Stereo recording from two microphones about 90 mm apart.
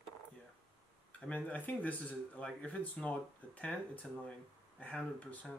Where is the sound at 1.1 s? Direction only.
15° left (ahead or behind).